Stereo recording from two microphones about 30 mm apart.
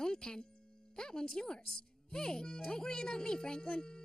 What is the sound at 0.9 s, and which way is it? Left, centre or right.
Speech, left.